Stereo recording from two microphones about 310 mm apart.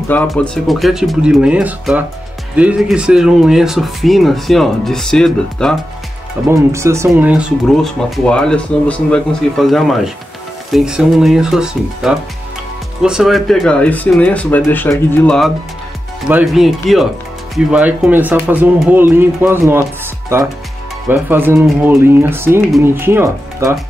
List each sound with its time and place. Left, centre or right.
0.1 s speech: centre
6.5 s speech: centre